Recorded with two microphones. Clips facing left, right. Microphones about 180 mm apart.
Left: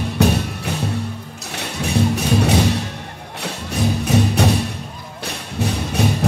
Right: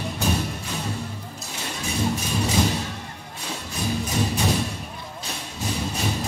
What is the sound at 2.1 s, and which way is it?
Music, 70° left (ahead or behind).